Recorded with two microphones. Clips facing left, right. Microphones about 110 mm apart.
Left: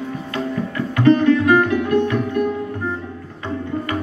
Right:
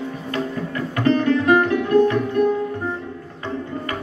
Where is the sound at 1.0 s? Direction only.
35° right (ahead or behind).